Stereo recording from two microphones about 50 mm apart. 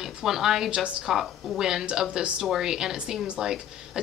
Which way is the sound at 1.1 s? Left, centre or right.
Centre.